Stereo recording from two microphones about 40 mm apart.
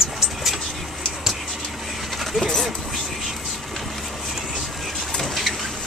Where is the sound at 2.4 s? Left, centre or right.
Centre.